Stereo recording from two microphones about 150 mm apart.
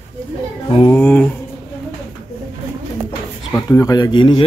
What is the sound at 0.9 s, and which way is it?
Speech, 10° left (ahead or behind).